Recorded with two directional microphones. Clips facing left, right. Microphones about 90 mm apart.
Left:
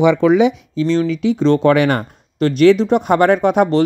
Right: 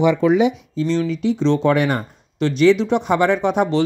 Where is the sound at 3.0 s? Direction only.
55° left (ahead or behind).